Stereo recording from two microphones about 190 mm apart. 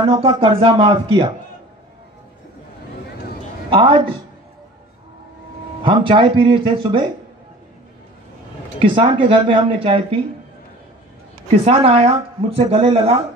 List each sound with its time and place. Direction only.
0.0 s speech: 30° right (ahead or behind)
3.7 s speech: 30° right (ahead or behind)
5.9 s speech: 25° right (ahead or behind)
8.9 s speech: 25° right (ahead or behind)
11.5 s speech: 30° right (ahead or behind)